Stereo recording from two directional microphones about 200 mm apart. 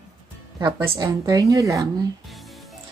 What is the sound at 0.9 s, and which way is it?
Speech, 20° right (ahead or behind).